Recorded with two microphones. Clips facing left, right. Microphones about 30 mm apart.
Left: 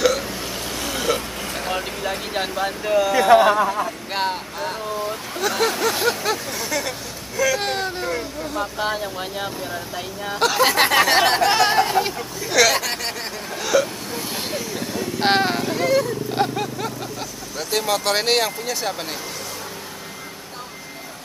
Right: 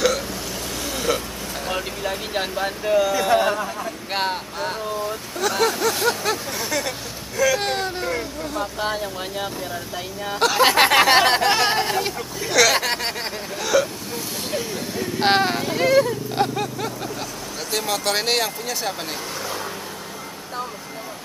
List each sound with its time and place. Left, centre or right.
0.7 s vehicle: centre
1.7 s speech: centre
3.3 s speech: centre
4.1 s speech: centre
5.4 s speech: centre
10.6 s speech: centre
12.8 s a sound: right
13.6 s vehicle: centre
15.1 s speech: centre